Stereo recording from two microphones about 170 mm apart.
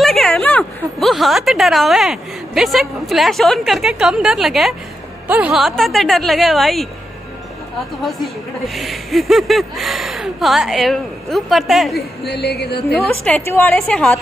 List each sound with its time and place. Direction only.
0.0 s a woman's voice: centre (ahead or behind)
8.6 s speech: centre (ahead or behind)
12.3 s music: 75° left (ahead or behind)
12.9 s a woman's voice: 10° left (ahead or behind)